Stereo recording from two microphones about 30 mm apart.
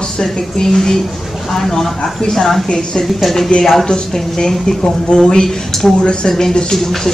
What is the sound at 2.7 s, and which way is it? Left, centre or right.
A woman's voice, left.